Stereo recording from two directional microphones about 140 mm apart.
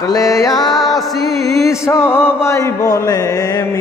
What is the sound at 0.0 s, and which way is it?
Speech, 25° left (ahead or behind).